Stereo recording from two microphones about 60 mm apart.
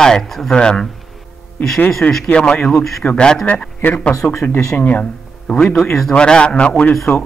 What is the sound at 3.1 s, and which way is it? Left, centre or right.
Speech, centre.